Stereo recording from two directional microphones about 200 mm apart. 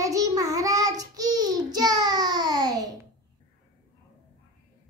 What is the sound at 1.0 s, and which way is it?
A child's voice, 20° right (ahead or behind).